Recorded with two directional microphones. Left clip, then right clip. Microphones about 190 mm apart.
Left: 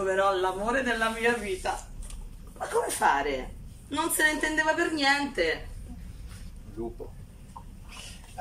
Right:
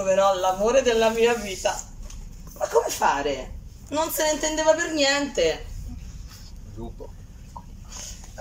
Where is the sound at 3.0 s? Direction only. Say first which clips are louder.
Right 2 dB; 10° right (ahead or behind).